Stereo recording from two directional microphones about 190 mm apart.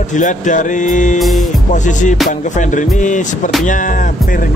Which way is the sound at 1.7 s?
40° left (ahead or behind).